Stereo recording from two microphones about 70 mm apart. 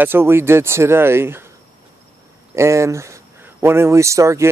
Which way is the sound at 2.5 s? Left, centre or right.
Right.